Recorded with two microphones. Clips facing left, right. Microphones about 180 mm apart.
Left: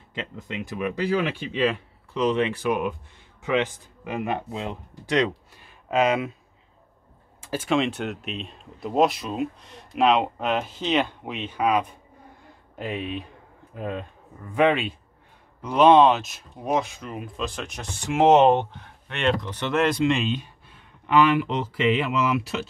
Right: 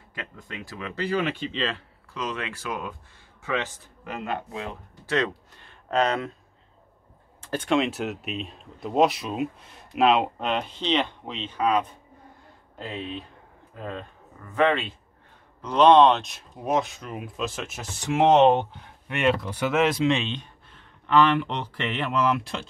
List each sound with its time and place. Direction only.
0.1 s speech: 20° left (ahead or behind)
7.4 s speech: 5° left (ahead or behind)